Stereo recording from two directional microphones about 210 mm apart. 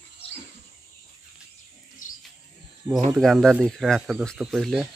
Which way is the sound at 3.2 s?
Centre (ahead or behind).